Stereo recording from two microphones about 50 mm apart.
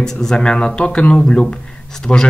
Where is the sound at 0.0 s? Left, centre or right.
Centre.